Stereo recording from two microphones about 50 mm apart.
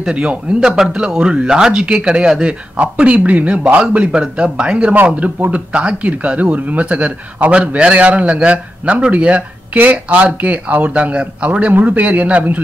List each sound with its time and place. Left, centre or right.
0.0 s a man's voice: centre